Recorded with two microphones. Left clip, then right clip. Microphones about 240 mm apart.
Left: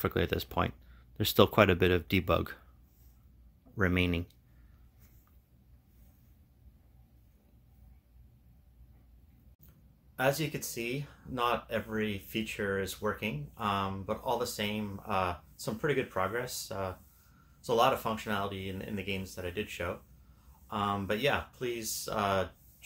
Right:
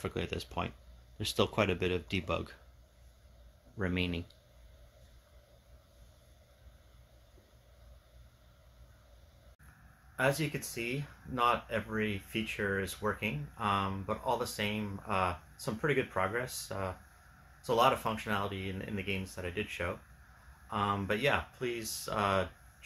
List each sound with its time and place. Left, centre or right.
0.0 s speech: left
3.7 s speech: left
10.1 s speech: centre